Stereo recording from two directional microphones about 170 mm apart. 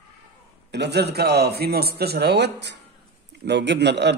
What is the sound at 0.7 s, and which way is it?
A man's voice, 80° right.